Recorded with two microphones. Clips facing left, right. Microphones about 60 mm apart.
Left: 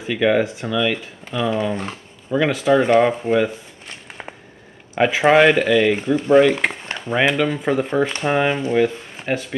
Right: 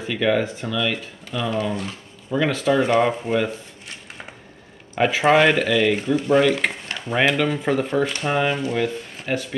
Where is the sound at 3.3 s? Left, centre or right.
Left.